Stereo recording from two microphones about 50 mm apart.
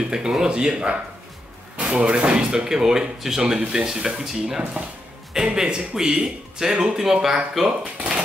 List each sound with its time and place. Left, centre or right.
0.0 s speech: centre
7.6 s speech: right